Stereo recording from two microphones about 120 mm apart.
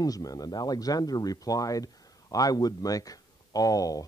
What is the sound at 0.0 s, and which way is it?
Speech, 30° left (ahead or behind).